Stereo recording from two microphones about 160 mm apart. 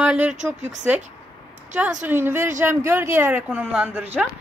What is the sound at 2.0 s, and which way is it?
Speech, 15° right (ahead or behind).